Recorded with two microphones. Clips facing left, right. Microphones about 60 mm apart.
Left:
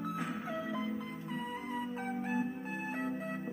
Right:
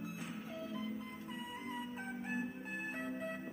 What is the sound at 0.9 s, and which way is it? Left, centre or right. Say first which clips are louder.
Music: left 5 dB; left.